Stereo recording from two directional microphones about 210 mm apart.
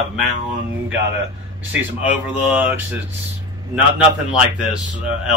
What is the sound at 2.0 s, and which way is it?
Speech, 5° right (ahead or behind).